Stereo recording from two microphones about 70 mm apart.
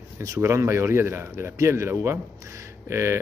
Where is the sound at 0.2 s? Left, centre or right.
Right.